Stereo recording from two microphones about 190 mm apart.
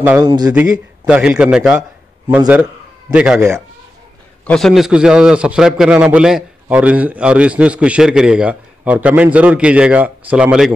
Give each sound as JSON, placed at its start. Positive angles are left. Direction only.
{"t": 0.2, "sound": "speech", "side_deg": -20}
{"t": 0.5, "sound": "a man's voice", "side_deg": -5}
{"t": 4.5, "sound": "a man's voice", "side_deg": 0}